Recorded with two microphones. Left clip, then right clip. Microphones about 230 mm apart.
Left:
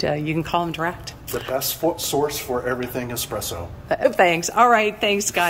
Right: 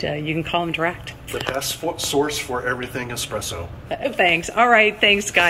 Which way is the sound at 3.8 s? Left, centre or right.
Centre.